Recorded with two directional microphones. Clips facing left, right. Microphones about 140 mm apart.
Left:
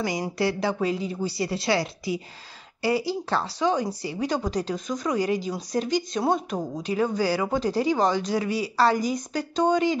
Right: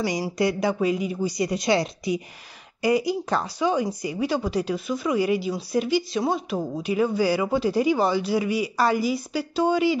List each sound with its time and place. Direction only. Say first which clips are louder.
0.4 s speech: right 2 dB; 15° right (ahead or behind)
6.9 s speech: right 2 dB; 10° right (ahead or behind)